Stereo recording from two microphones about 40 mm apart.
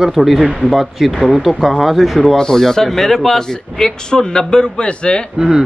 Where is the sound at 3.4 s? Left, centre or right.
Centre.